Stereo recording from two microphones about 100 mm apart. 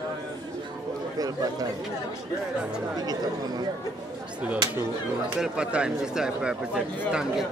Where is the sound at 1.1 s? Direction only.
40° right (ahead or behind).